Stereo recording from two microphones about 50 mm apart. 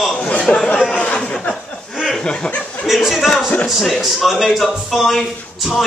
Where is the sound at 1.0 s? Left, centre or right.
Left.